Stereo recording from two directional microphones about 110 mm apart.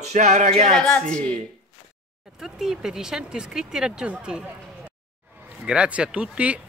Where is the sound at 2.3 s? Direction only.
5° right (ahead or behind).